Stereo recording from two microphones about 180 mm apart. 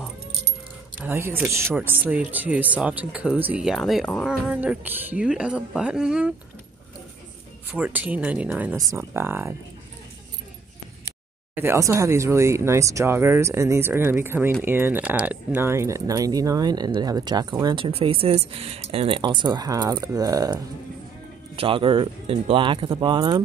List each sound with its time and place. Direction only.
0.9 s speech: 10° right (ahead or behind)
7.7 s speech: 10° right (ahead or behind)
11.5 s speech: 15° right (ahead or behind)